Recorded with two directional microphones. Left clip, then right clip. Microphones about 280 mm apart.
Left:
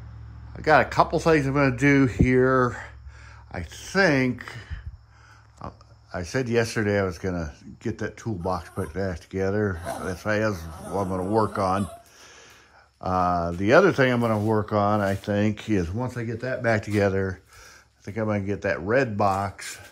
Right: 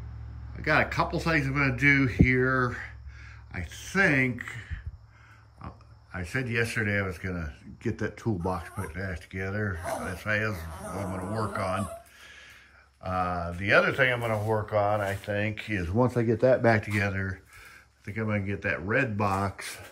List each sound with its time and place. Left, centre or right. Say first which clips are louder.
0.6 s speech: left 6 dB; centre
12.2 s a sound: even; centre
13.0 s speech: left 6 dB; centre
15.2 s speech: left 5 dB; centre
15.9 s speech: right 6 dB; centre